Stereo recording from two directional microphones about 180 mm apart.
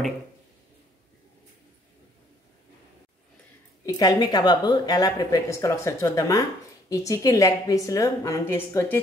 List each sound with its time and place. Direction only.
3.8 s a woman's voice: 20° left (ahead or behind)